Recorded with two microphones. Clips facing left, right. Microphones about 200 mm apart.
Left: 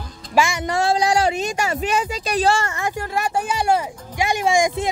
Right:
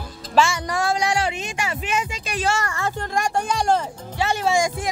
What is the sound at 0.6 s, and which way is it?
Speech, 30° left (ahead or behind).